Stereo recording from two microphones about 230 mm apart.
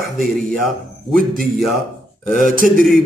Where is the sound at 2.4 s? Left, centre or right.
Right.